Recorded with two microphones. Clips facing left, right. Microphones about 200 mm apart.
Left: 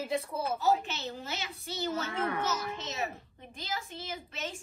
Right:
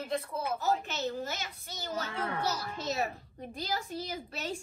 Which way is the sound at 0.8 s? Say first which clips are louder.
Right 4 dB; 50° right (ahead or behind).